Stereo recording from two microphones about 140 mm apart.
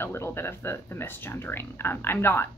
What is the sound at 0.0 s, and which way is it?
Speech, 20° left (ahead or behind).